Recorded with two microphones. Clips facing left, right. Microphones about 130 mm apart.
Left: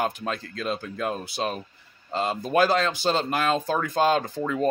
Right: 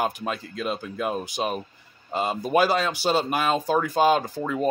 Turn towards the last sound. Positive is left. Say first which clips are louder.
# even
turn(degrees=-10)  # may be behind; listen again after turning